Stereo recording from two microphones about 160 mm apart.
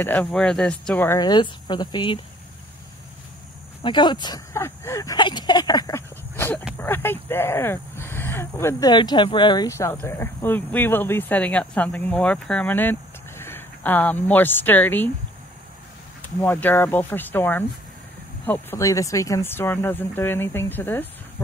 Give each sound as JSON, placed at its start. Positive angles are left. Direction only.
{"t": 0.0, "sound": "speech", "side_deg": 10}
{"t": 1.2, "sound": "speech", "side_deg": 30}
{"t": 3.8, "sound": "speech", "side_deg": 30}
{"t": 4.6, "sound": "speech", "side_deg": 15}
{"t": 16.2, "sound": "speech", "side_deg": 10}